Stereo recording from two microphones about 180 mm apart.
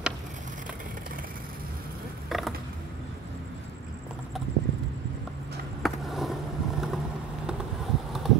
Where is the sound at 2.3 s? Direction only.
Centre (ahead or behind).